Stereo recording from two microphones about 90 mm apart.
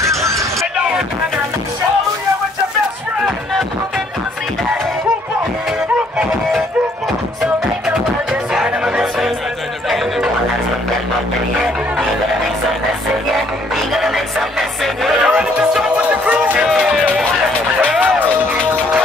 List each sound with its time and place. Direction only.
0.0 s hubbub: 35° right (ahead or behind)
7.9 s music: 10° right (ahead or behind)
13.9 s music: centre (ahead or behind)
18.0 s music: 20° right (ahead or behind)